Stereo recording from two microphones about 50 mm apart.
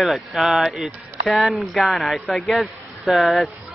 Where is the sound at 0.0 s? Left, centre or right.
Centre.